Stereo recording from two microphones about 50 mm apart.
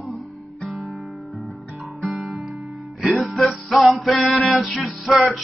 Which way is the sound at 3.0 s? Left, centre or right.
Centre.